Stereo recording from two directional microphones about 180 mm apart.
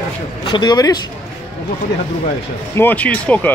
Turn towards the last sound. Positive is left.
turn(degrees=5)  # may be behind; listen again after turning